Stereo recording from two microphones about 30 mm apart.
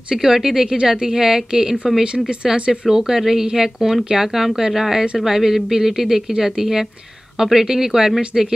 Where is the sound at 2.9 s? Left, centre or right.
Centre.